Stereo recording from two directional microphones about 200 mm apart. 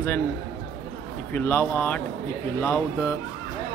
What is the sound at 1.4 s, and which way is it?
Speech, 10° left (ahead or behind).